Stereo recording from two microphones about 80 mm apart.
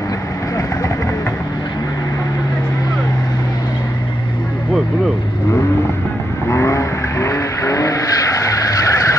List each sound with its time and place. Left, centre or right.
6.5 s vehicle: left